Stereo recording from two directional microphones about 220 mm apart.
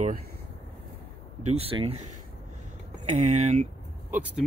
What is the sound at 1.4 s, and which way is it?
Speech, 25° right (ahead or behind).